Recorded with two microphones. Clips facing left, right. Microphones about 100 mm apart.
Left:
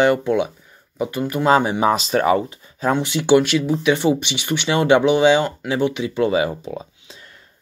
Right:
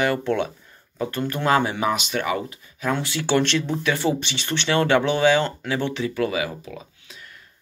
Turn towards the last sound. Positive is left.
turn(degrees=30)  # may be behind; listen again after turning